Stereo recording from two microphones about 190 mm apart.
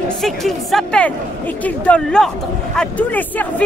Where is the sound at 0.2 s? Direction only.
Centre (ahead or behind).